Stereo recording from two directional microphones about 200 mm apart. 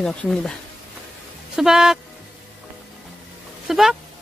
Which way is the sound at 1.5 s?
5° right (ahead or behind).